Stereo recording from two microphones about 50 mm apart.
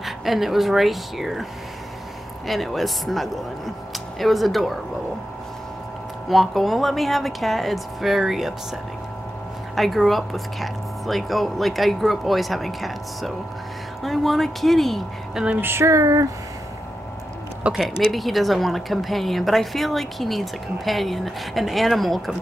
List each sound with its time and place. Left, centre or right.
0.0 s a woman's voice: centre
2.4 s a woman's voice: centre
6.2 s a woman's voice: centre
9.8 s a woman's voice: centre
15.6 s a sound: right
17.6 s speech: right
18.1 s a woman's voice: centre